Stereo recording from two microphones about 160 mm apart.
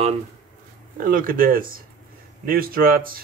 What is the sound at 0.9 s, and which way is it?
Speech, 60° right (ahead or behind).